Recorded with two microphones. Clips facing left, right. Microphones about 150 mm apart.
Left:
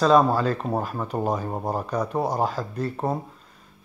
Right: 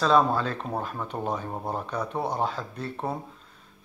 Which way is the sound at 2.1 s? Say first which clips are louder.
Left 4 dB; 40° left (ahead or behind).